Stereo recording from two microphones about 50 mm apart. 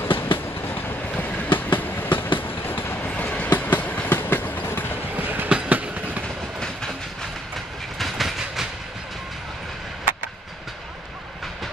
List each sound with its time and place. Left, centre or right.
0.0 s train: left
1.1 s train: left
3.0 s train: left
5.1 s train: right
6.2 s train: centre
8.0 s train: centre